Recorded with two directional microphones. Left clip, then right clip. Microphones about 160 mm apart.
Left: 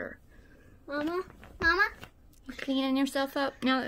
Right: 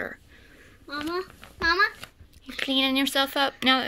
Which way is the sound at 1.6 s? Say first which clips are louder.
Right 3 dB; 75° left (ahead or behind).